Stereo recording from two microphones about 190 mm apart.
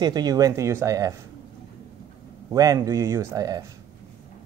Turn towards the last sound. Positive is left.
turn(degrees=-20)  # may be behind; listen again after turning